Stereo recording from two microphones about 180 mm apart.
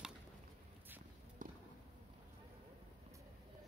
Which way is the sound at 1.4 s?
45° right (ahead or behind).